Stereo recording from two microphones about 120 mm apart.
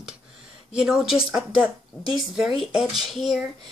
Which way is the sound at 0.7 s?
5° right (ahead or behind).